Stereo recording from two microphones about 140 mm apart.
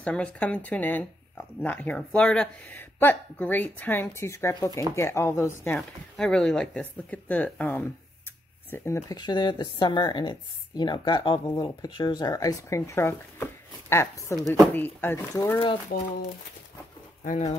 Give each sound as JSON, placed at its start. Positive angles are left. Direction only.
{"t": 0.0, "sound": "a woman's voice", "side_deg": 10}
{"t": 5.8, "sound": "a woman's voice", "side_deg": 5}
{"t": 9.2, "sound": "a woman's voice", "side_deg": 30}